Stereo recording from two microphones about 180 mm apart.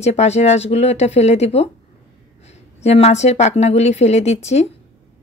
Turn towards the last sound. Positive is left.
turn(degrees=40)  # may be behind; listen again after turning